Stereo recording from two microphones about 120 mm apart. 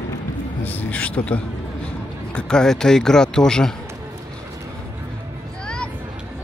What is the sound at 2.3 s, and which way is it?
Speech, 5° left (ahead or behind).